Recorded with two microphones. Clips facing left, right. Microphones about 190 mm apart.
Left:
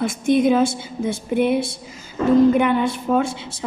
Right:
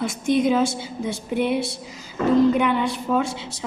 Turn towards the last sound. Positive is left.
turn(degrees=50)  # may be behind; listen again after turning